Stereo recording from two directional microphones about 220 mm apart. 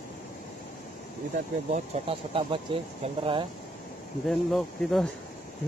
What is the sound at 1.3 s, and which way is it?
Speech, 30° right (ahead or behind).